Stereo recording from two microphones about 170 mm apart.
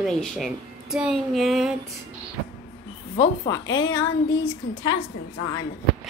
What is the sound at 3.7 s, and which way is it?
Speech, 20° left (ahead or behind).